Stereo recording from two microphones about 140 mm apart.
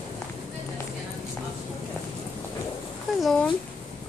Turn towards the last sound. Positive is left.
turn(degrees=5)  # may be behind; listen again after turning